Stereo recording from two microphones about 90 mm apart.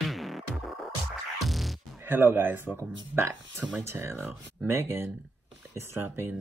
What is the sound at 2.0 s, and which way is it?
Speech, 25° right (ahead or behind).